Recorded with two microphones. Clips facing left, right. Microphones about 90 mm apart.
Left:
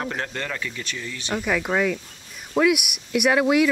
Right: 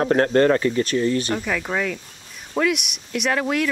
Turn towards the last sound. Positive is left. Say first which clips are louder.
# left 4 dB
turn(degrees=5)  # may be behind; listen again after turning